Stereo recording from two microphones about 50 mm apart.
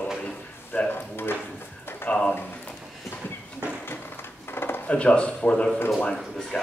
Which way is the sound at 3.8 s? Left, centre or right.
Left.